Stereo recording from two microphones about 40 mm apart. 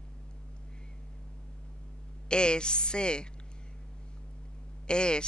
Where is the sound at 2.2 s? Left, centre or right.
Left.